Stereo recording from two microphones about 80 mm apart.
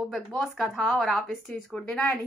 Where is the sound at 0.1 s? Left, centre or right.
Centre.